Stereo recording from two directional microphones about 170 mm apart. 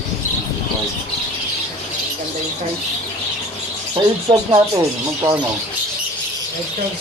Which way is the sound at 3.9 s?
20° right (ahead or behind).